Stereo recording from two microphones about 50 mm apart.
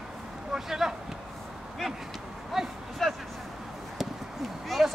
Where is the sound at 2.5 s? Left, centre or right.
Centre.